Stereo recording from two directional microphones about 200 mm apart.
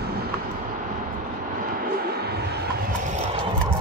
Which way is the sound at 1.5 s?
45° right (ahead or behind).